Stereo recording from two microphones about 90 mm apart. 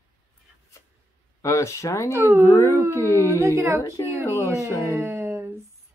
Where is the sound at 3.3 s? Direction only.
30° right (ahead or behind).